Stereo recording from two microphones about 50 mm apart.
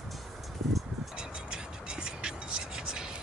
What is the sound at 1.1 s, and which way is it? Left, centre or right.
Music, centre.